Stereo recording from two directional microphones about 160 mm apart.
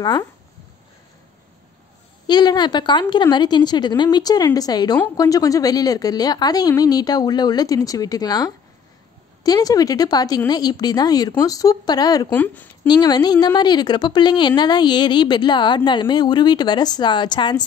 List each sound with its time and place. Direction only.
0.0 s a woman's voice: 25° left (ahead or behind)
2.2 s a woman's voice: 25° left (ahead or behind)
12.3 s speech: 10° left (ahead or behind)
12.8 s a woman's voice: 25° left (ahead or behind)